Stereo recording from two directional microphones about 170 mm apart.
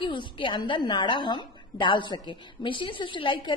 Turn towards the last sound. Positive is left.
turn(degrees=30)  # may be behind; listen again after turning